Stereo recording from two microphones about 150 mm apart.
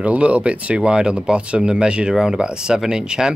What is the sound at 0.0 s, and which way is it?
Speech, 10° right (ahead or behind).